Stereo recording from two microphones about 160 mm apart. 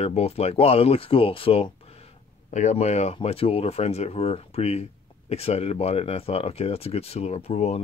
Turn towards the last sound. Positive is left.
turn(degrees=40)  # may be behind; listen again after turning